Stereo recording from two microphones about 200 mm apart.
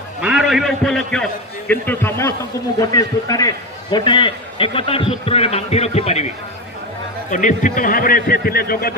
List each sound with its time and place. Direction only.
0.2 s a man's voice: 5° right (ahead or behind); by 6.2 s 30° left (ahead or behind)
7.2 s a man's voice: 40° left (ahead or behind)